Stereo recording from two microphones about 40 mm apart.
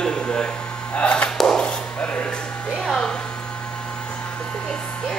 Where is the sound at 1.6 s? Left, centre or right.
Left.